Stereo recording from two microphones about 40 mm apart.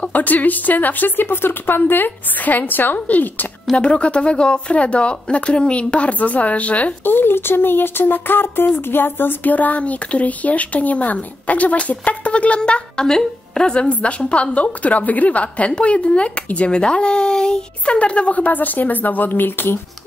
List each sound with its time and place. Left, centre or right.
0.0 s speech: left
3.7 s speech: left
7.1 s speech: left
13.0 s a woman's voice: centre
13.8 s speech: left
17.8 s speech: left